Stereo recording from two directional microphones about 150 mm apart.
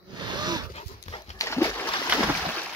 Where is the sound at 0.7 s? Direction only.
45° left (ahead or behind).